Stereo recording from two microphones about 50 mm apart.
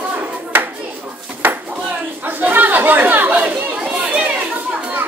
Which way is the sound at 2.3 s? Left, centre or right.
Right.